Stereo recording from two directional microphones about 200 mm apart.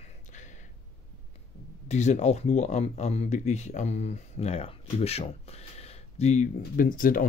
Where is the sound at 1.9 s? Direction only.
35° left (ahead or behind).